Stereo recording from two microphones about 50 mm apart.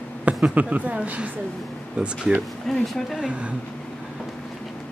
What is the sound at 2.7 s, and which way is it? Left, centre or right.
Speech, centre.